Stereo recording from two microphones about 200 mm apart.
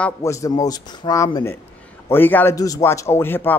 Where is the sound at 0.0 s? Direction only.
15° left (ahead or behind).